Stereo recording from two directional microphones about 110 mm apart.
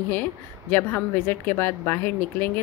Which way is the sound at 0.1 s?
15° left (ahead or behind).